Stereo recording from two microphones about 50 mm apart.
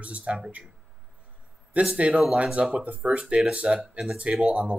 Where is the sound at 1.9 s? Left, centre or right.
Right.